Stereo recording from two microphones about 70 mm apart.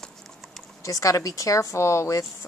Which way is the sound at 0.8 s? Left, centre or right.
Left.